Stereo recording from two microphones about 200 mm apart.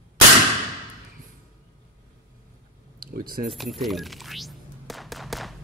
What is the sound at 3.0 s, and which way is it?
Speech, 45° right (ahead or behind).